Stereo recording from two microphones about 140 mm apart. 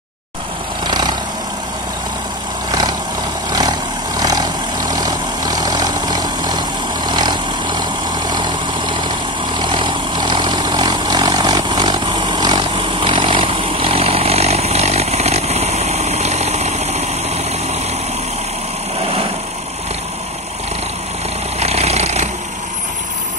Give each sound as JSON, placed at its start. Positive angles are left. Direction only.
{"t": 0.8, "sound": "vehicle", "side_deg": -30}
{"t": 2.7, "sound": "vehicle", "side_deg": -25}
{"t": 4.2, "sound": "vehicle", "side_deg": -25}
{"t": 21.5, "sound": "vehicle", "side_deg": -50}